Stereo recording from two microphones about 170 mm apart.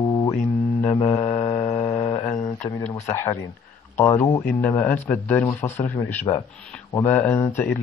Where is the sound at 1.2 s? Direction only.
40° left (ahead or behind).